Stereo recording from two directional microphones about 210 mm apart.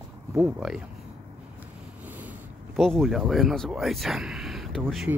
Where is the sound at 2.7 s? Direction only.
Centre (ahead or behind).